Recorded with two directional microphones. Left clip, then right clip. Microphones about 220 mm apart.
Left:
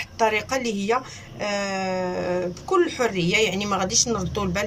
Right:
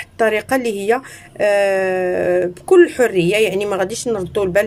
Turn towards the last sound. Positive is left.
turn(degrees=-35)  # may be behind; listen again after turning